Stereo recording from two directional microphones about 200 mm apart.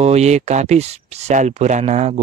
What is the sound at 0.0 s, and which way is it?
Speech, 35° right (ahead or behind).